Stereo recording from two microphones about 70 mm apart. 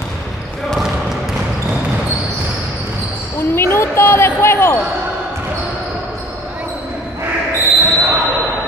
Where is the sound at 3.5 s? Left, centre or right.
Left.